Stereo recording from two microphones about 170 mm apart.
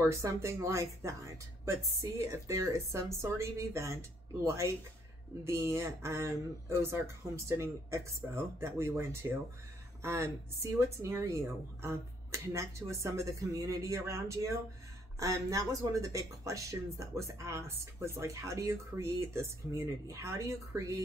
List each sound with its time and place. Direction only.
0.0 s a woman's voice: 15° right (ahead or behind)
5.4 s a woman's voice: 15° right (ahead or behind)